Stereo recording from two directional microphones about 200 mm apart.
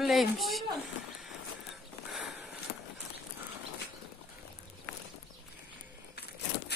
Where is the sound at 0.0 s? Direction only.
Centre (ahead or behind).